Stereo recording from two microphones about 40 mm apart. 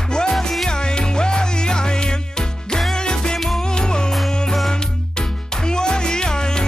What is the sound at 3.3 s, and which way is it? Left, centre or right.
Music, centre.